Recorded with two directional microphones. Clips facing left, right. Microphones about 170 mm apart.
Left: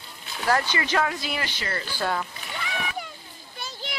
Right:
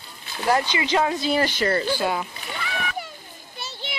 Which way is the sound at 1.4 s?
40° right (ahead or behind).